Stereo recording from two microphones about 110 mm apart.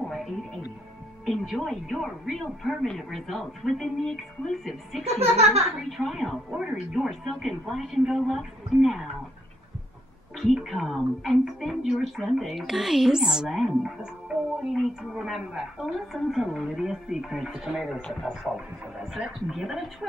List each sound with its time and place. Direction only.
1.2 s a woman's voice: centre (ahead or behind)
5.0 s speech: 70° right (ahead or behind)
5.8 s a woman's voice: centre (ahead or behind)
10.3 s a woman's voice: centre (ahead or behind)